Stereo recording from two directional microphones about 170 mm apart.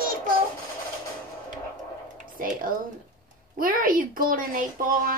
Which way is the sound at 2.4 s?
55° right (ahead or behind).